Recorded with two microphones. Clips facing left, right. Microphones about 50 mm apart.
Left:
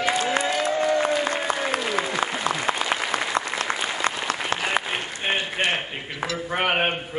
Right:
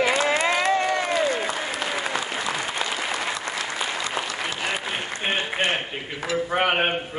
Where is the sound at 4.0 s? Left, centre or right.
Left.